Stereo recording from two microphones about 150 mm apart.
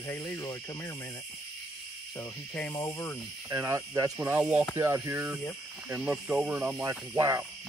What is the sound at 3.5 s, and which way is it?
Speech, 20° right (ahead or behind).